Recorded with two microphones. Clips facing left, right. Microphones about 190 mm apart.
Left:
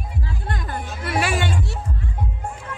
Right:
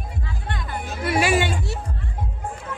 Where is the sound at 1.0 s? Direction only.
Centre (ahead or behind).